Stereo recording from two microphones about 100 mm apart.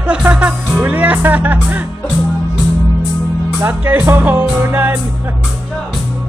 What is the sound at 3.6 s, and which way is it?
Music, 20° right (ahead or behind).